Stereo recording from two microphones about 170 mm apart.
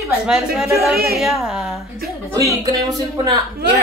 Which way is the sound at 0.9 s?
65° right (ahead or behind).